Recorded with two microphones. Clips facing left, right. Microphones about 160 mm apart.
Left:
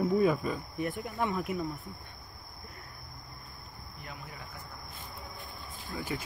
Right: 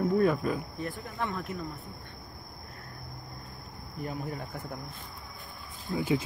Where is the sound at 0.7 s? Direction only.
20° left (ahead or behind).